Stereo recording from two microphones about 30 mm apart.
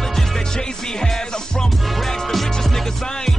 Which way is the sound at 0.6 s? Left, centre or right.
Left.